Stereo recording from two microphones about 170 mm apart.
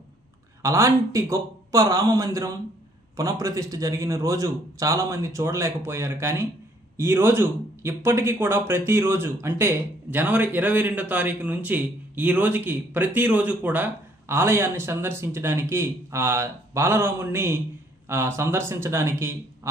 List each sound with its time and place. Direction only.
0.6 s a man's voice: 15° right (ahead or behind)